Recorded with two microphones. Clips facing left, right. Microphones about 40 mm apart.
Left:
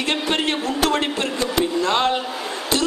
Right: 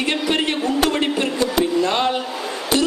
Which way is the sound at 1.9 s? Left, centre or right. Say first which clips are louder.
Left 1 dB; centre.